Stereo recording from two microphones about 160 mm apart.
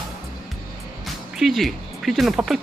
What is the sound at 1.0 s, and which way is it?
Music, centre (ahead or behind).